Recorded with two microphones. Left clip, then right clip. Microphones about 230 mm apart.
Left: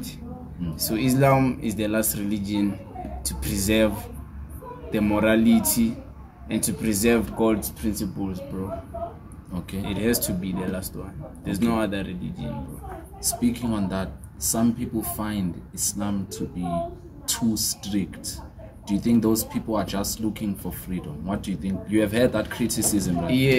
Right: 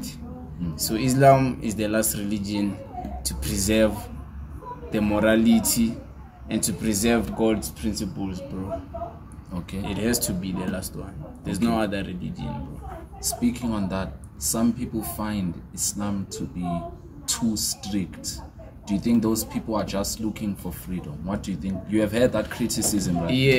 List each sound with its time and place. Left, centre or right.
0.7 s speech: centre
9.5 s speech: centre
9.8 s speech: centre
13.4 s speech: centre
23.2 s speech: centre